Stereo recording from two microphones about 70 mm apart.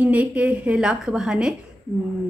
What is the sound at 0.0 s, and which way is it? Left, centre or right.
A woman's voice, right.